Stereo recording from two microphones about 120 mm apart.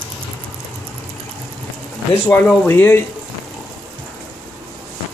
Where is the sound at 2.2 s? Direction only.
15° left (ahead or behind).